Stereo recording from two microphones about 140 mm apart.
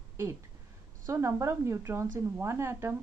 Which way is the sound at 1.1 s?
20° right (ahead or behind).